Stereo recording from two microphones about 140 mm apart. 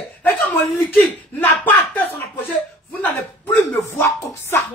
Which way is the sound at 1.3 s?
10° left (ahead or behind).